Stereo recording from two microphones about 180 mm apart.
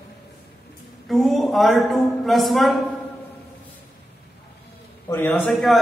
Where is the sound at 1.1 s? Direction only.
Centre (ahead or behind).